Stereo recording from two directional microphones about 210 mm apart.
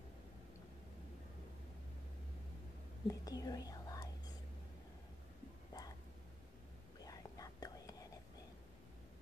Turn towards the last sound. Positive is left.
turn(degrees=15)  # may be behind; listen again after turning